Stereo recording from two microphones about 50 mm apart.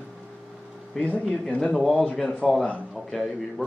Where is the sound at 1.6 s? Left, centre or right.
Centre.